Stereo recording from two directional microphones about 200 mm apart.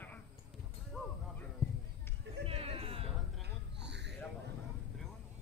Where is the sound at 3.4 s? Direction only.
60° right (ahead or behind).